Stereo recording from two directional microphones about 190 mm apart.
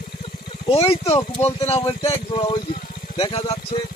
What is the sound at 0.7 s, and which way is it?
Speech, 30° left (ahead or behind).